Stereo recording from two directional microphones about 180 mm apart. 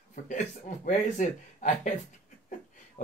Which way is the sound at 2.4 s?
40° left (ahead or behind).